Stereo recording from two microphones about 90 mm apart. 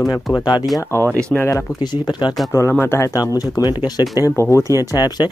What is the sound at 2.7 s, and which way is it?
Speech, 25° left (ahead or behind).